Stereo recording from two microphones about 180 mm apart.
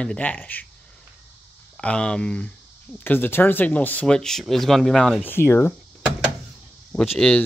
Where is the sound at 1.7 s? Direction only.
5° left (ahead or behind).